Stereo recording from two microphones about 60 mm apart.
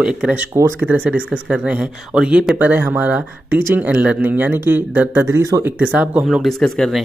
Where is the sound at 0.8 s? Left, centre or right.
Right.